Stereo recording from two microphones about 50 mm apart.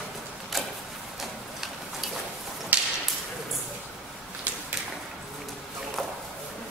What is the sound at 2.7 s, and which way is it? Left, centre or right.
Whip, right.